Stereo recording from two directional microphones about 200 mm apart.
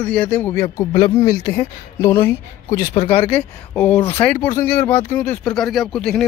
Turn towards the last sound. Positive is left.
turn(degrees=5)  # may be behind; listen again after turning